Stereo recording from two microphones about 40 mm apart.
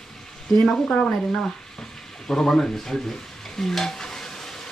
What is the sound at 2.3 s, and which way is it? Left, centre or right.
Speech, centre.